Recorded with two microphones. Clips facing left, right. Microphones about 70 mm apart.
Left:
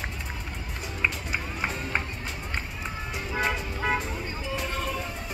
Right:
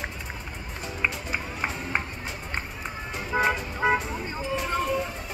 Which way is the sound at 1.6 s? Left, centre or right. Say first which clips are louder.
Right 1 dB; centre.